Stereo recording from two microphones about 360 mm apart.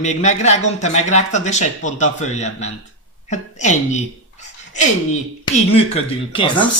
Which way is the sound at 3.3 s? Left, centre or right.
Centre.